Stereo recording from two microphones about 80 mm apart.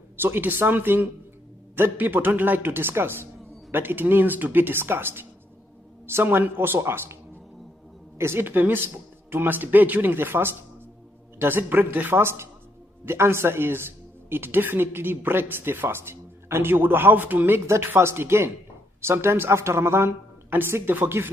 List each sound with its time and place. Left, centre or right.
0.2 s speech: right
8.2 s speech: right